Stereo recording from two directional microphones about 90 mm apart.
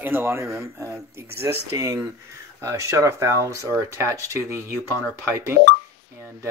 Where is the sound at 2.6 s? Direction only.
35° right (ahead or behind).